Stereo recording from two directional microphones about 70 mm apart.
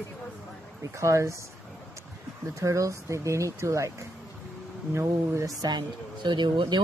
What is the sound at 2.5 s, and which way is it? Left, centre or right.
Speech, right.